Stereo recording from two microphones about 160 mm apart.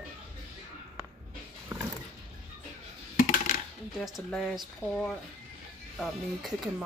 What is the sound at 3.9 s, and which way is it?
Speech, centre (ahead or behind).